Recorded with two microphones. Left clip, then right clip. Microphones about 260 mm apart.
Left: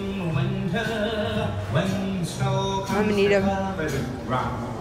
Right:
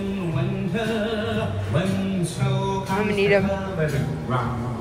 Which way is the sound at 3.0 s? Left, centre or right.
Centre.